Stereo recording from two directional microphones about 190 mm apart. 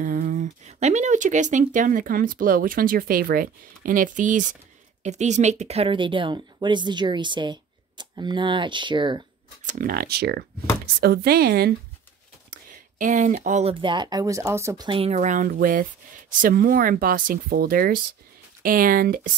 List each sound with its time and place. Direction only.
0.0 s speech: 45° right (ahead or behind); by 9.2 s 25° right (ahead or behind)
9.7 s speech: 50° right (ahead or behind)
13.0 s speech: 40° right (ahead or behind)